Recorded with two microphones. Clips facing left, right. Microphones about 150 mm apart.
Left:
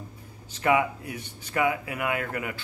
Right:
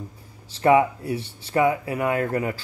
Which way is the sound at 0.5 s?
35° right (ahead or behind).